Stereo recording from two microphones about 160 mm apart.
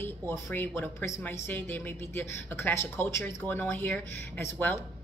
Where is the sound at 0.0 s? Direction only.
15° left (ahead or behind).